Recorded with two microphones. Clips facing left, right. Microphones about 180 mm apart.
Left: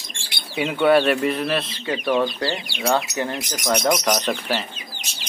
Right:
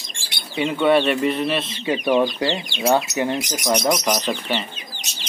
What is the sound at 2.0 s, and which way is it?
Speech, 15° right (ahead or behind).